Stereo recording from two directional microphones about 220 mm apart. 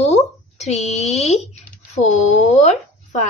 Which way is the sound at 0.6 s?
30° left (ahead or behind).